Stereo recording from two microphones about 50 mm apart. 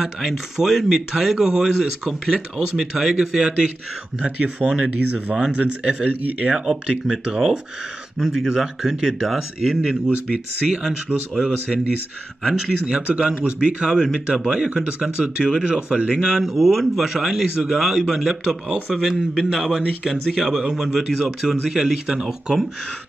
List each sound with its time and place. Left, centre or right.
0.0 s speech: centre
4.6 s speech: centre
6.5 s speech: centre
13.0 s a man's voice: right
13.9 s speech: centre
16.4 s speech: centre